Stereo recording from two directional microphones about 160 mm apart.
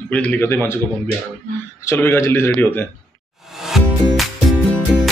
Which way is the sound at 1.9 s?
15° left (ahead or behind).